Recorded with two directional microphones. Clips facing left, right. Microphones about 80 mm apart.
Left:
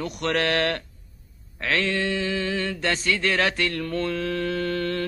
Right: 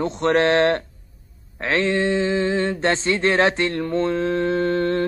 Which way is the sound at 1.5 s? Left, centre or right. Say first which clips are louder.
Right 4 dB; right.